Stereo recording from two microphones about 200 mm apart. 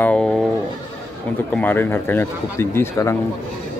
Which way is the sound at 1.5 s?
10° left (ahead or behind).